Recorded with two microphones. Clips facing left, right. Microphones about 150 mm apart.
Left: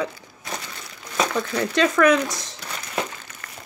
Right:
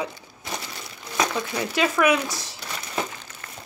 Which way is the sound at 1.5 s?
10° right (ahead or behind).